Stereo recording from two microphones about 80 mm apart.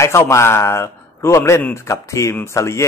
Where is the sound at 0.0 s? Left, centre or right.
Left.